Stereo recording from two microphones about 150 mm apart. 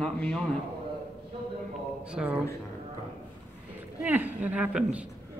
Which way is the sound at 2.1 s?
5° right (ahead or behind).